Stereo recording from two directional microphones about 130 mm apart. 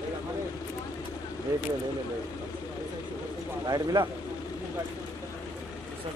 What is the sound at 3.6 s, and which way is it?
Speech, 30° right (ahead or behind).